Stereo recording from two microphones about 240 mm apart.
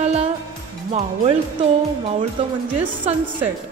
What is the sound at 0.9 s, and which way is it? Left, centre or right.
Speech, right.